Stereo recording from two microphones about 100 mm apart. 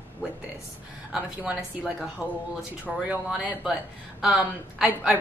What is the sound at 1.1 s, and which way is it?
Speech, 5° right (ahead or behind).